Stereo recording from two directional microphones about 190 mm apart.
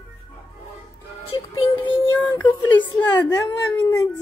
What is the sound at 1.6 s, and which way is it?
Speech, 25° left (ahead or behind).